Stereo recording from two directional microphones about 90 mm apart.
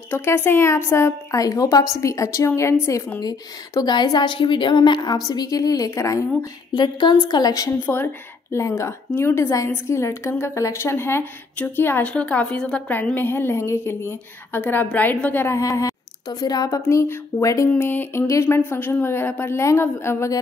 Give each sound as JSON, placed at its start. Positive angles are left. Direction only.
{"t": 0.1, "sound": "a woman's voice", "side_deg": 25}
{"t": 1.4, "sound": "a woman's voice", "side_deg": 40}
{"t": 3.2, "sound": "a woman's voice", "side_deg": 45}
{"t": 6.7, "sound": "a woman's voice", "side_deg": 60}
{"t": 7.8, "sound": "a woman's voice", "side_deg": 25}
{"t": 12.0, "sound": "a woman's voice", "side_deg": 15}
{"t": 15.5, "sound": "a woman's voice", "side_deg": 40}
{"t": 17.6, "sound": "a woman's voice", "side_deg": 20}
{"t": 18.2, "sound": "a woman's voice", "side_deg": 35}